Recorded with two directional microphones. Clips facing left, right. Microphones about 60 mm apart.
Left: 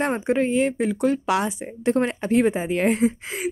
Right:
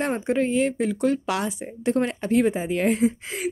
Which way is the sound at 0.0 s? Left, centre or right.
Left.